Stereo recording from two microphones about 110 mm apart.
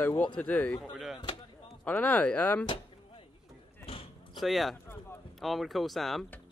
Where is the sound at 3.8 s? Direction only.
60° left (ahead or behind).